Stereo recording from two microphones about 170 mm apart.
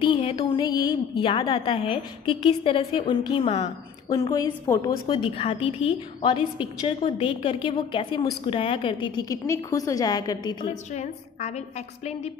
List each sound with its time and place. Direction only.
0.0 s a woman's voice: 30° left (ahead or behind)
10.7 s a woman's voice: 40° left (ahead or behind)